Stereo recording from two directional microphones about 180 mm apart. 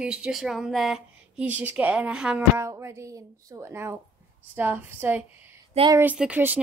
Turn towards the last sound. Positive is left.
turn(degrees=-10)  # may be behind; listen again after turning